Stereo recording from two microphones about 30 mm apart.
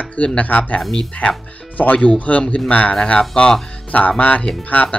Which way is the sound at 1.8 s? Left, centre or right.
Left.